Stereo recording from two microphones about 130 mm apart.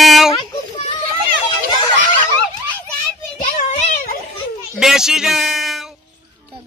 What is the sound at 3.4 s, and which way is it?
Child singing, 60° left (ahead or behind).